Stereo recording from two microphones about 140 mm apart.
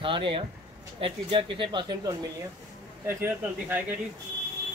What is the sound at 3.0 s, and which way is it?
Speech, 15° right (ahead or behind).